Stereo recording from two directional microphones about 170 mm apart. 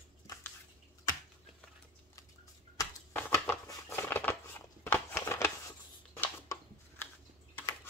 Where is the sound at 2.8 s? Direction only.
15° left (ahead or behind).